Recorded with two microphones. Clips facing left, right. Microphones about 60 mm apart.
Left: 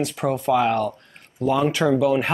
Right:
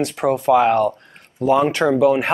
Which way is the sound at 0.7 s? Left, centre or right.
Centre.